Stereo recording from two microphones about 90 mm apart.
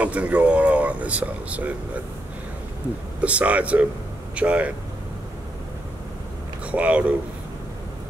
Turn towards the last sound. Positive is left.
turn(degrees=-15)  # may be behind; listen again after turning